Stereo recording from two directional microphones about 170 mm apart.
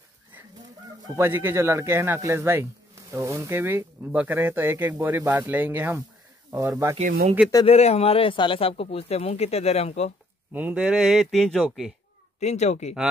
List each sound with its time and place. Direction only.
1.0 s a man's voice: 15° right (ahead or behind)
7.0 s speech: 55° right (ahead or behind)
7.6 s speech: 40° left (ahead or behind)
10.5 s a man's voice: 10° right (ahead or behind)
12.4 s speech: 40° left (ahead or behind)